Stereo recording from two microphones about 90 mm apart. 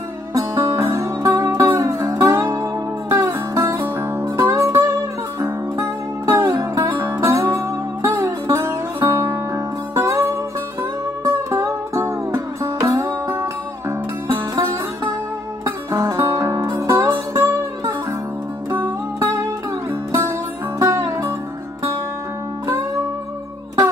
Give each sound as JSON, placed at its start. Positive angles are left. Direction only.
{"t": 0.3, "sound": "music", "side_deg": -35}
{"t": 2.0, "sound": "music", "side_deg": -40}
{"t": 7.0, "sound": "music", "side_deg": -25}
{"t": 15.6, "sound": "music", "side_deg": -35}
{"t": 20.8, "sound": "music", "side_deg": -30}